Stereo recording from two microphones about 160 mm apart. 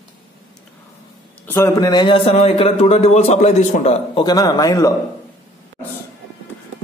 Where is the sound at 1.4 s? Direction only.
15° left (ahead or behind); by 4.2 s 40° left (ahead or behind).